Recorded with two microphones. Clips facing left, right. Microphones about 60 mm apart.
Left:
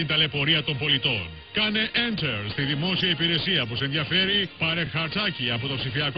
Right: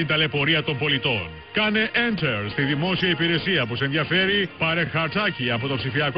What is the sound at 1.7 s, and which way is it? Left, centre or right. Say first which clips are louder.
Speech: right 4 dB; right.